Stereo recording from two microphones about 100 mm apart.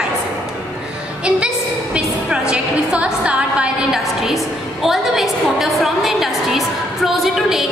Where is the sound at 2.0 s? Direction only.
10° right (ahead or behind).